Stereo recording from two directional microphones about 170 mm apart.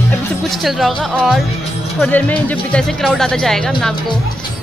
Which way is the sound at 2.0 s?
10° left (ahead or behind).